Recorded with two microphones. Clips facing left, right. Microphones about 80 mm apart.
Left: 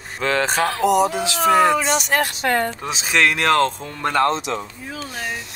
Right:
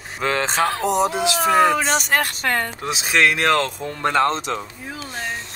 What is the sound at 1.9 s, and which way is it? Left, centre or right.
Speech, right.